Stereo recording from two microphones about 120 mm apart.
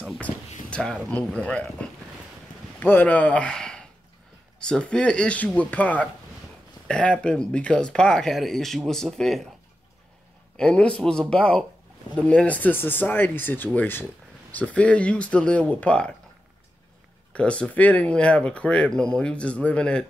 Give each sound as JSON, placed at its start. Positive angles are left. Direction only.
{"t": 0.2, "sound": "a sound", "side_deg": 10}
{"t": 1.1, "sound": "a man's voice", "side_deg": 10}
{"t": 10.6, "sound": "speech", "side_deg": 10}
{"t": 17.3, "sound": "speech", "side_deg": 10}